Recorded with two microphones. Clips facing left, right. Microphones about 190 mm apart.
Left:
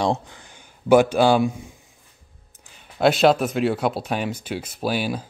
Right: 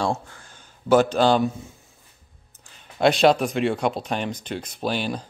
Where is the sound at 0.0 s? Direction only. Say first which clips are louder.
Left 3 dB; 15° left (ahead or behind).